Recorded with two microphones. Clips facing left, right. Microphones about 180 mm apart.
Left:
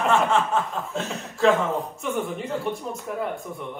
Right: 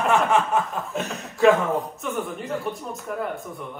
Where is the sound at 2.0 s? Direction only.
Centre (ahead or behind).